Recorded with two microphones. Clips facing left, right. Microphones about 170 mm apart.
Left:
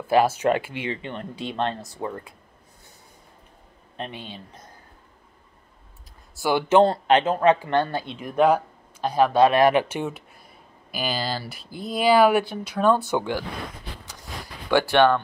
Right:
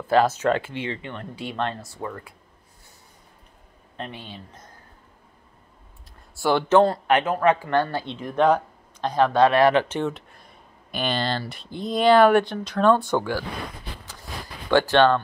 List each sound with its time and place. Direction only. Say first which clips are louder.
0.1 s speech: even; 10° left (ahead or behind)
3.9 s a man's voice: left 1 dB; 20° left (ahead or behind)
6.3 s speech: right 1 dB; 5° left (ahead or behind)
6.8 s speech: left 1 dB; 25° left (ahead or behind)
14.7 s speech: right 1 dB; 15° left (ahead or behind)